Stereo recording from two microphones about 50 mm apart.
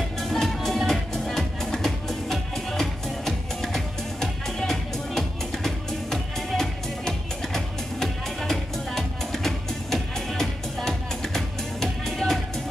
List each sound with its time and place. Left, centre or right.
0.2 s music: centre